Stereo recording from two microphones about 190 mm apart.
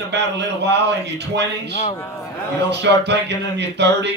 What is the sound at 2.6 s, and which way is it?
Speech, 65° right (ahead or behind).